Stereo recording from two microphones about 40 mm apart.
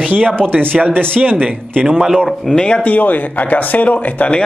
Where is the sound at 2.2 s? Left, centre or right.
Centre.